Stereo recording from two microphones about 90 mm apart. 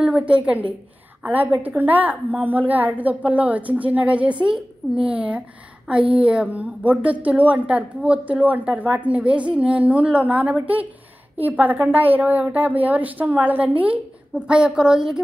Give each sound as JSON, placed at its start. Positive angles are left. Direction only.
{"t": 0.0, "sound": "a woman's voice", "side_deg": -15}